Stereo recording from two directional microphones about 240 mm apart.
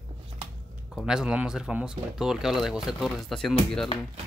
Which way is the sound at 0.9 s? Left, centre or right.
Centre.